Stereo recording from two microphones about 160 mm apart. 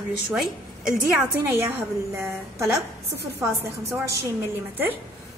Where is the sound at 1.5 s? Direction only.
15° right (ahead or behind).